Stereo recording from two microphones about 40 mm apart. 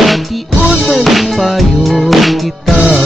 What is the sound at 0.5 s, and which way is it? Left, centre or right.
Music, right.